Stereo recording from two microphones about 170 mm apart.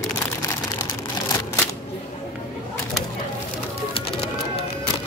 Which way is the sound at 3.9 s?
30° left (ahead or behind).